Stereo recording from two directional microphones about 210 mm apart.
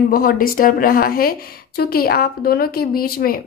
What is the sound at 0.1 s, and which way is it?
A woman's voice, 45° left (ahead or behind).